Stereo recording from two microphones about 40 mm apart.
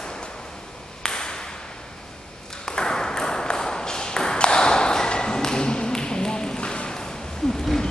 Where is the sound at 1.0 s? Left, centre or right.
Centre.